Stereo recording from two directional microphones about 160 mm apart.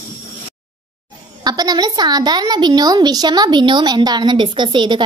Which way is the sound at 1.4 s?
25° right (ahead or behind).